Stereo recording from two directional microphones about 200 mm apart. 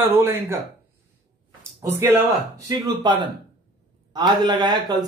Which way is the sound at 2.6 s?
20° right (ahead or behind).